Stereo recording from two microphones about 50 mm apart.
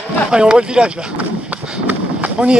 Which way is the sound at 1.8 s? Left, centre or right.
Right.